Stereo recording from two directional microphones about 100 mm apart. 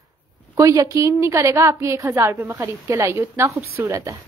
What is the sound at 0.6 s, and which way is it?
A woman's voice, 35° right (ahead or behind).